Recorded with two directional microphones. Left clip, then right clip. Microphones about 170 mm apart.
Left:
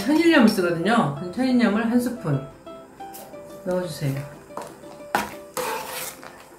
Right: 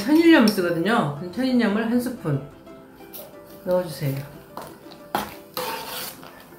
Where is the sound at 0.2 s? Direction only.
25° right (ahead or behind).